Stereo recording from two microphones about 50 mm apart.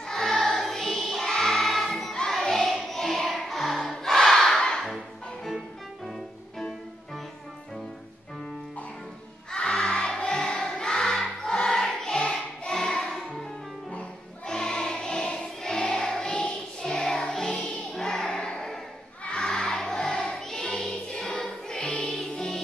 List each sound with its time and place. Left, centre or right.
0.0 s music: centre
1.3 s choir: centre
2.1 s music: centre
4.9 s music: centre
9.5 s music: centre